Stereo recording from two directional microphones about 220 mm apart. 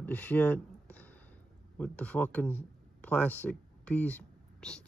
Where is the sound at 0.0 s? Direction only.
5° left (ahead or behind).